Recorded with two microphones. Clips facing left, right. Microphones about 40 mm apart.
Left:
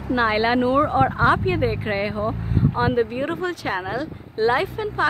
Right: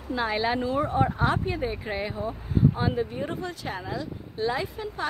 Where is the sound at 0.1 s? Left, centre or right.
Left.